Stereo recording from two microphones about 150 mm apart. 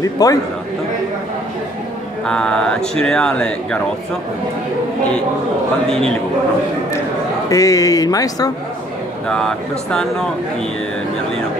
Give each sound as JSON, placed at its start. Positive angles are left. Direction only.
{"t": 0.0, "sound": "a man's voice", "side_deg": 25}
{"t": 2.2, "sound": "speech", "side_deg": 5}
{"t": 5.9, "sound": "speech", "side_deg": 5}
{"t": 7.4, "sound": "a man's voice", "side_deg": 20}
{"t": 9.3, "sound": "speech", "side_deg": 5}